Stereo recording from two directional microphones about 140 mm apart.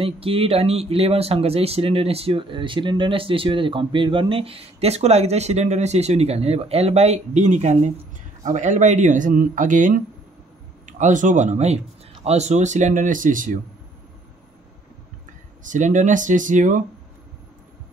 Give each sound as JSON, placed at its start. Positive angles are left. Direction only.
{"t": 0.0, "sound": "speech", "side_deg": -40}
{"t": 15.6, "sound": "speech", "side_deg": -65}